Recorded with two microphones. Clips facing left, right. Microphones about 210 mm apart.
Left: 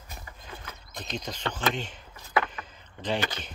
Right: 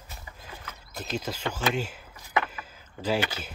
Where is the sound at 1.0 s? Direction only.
5° right (ahead or behind).